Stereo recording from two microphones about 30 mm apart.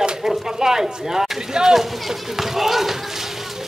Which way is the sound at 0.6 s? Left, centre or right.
Centre.